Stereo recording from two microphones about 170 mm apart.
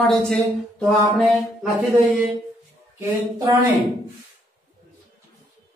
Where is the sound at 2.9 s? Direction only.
20° right (ahead or behind).